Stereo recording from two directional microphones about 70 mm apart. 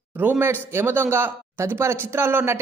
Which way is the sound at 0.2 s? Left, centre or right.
Right.